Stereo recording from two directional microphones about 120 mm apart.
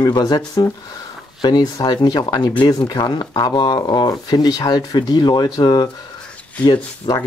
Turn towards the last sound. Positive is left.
turn(degrees=40)  # may be behind; listen again after turning